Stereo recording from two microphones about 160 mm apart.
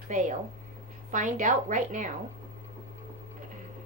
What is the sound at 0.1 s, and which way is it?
A woman's voice, 55° right (ahead or behind).